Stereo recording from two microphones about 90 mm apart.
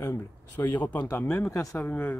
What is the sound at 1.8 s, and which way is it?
Speech, 20° left (ahead or behind).